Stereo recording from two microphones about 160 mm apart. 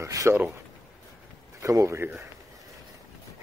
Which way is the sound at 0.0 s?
20° right (ahead or behind).